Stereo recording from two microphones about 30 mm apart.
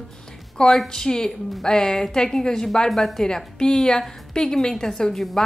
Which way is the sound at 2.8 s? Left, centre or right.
Centre.